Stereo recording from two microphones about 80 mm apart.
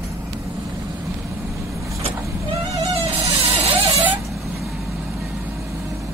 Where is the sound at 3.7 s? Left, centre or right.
Right.